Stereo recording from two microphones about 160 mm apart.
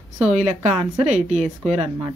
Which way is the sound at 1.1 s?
45° right (ahead or behind).